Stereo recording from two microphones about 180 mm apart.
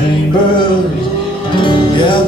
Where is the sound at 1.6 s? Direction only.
25° left (ahead or behind).